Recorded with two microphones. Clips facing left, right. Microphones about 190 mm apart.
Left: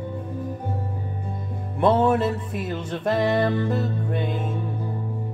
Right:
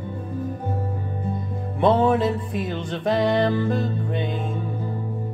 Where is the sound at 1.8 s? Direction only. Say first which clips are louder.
Right 1 dB; 10° left (ahead or behind).